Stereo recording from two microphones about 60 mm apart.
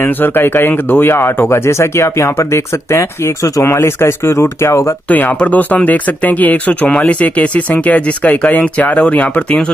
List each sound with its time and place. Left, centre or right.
0.0 s speech: left
5.1 s speech: left